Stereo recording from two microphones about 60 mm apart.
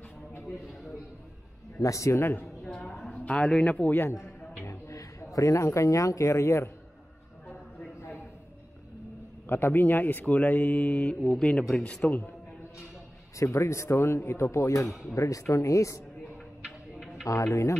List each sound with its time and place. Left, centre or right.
1.8 s speech: left
2.1 s a woman's voice: left
3.0 s a man's voice: centre
4.6 s a man's voice: left
9.5 s speech: left
13.4 s speech: left
14.9 s speech: centre
15.1 s speech: left
17.3 s speech: left